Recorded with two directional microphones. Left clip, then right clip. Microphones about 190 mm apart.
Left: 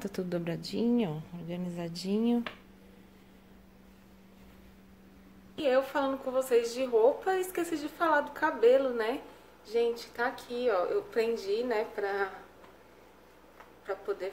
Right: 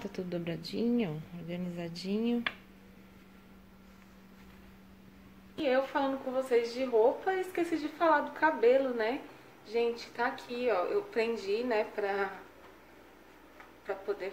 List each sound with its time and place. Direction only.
0.0 s a woman's voice: 15° left (ahead or behind)
5.6 s a woman's voice: 10° left (ahead or behind)
13.8 s speech: 5° left (ahead or behind)